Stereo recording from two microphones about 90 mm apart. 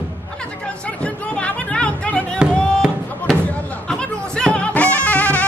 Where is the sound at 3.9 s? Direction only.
5° left (ahead or behind).